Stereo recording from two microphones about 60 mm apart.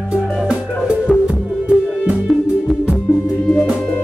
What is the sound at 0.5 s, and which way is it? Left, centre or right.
Music, centre.